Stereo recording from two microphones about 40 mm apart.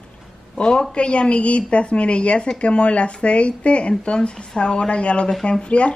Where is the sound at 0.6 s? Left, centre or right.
Left.